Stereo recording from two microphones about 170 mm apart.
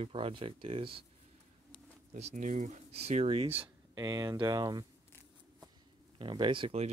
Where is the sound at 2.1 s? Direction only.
45° right (ahead or behind).